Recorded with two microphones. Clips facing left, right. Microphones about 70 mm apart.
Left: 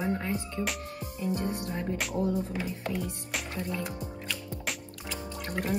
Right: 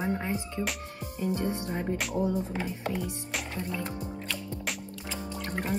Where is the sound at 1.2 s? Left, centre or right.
Right.